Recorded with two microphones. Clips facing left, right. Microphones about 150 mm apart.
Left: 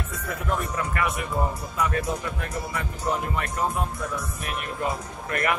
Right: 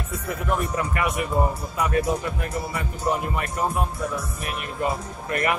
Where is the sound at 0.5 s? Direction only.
15° right (ahead or behind).